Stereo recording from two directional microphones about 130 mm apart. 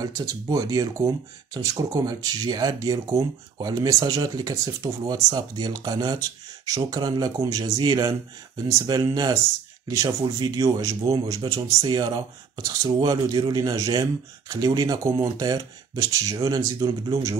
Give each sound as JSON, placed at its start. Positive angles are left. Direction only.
{"t": 0.0, "sound": "speech", "side_deg": -25}